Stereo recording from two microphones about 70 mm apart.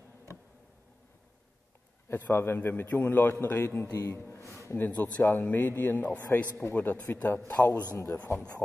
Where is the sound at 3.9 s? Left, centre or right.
Left.